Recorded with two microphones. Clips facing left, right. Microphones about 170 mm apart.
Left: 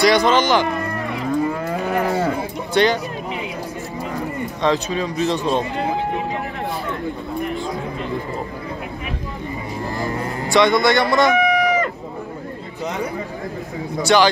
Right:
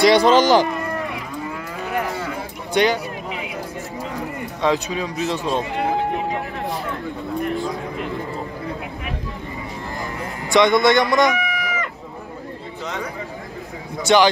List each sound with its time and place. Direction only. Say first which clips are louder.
0.0 s speech: right 2 dB; 30° right (ahead or behind)
1.1 s cattle: left 8 dB; 35° left (ahead or behind)
2.0 s a sound: left 7 dB; 40° left (ahead or behind)
2.7 s speech: left 1 dB; 10° right (ahead or behind)
4.6 s speech: left 1 dB; 10° right (ahead or behind)
10.5 s speech: right 1 dB; 20° right (ahead or behind)
11.3 s chicken: left 9 dB; 35° left (ahead or behind)
14.0 s speech: even; 20° right (ahead or behind)